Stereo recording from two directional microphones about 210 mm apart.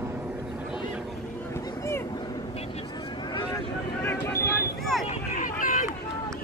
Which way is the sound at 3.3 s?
15° left (ahead or behind).